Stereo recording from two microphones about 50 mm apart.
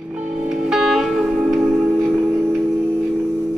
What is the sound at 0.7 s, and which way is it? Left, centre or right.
Music, centre.